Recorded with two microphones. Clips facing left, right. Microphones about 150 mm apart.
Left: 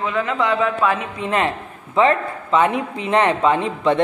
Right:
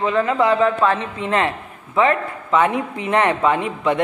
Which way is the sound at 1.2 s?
20° left (ahead or behind).